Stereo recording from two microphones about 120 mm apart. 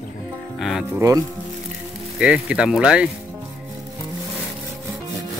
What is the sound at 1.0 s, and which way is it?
Speech, 25° right (ahead or behind).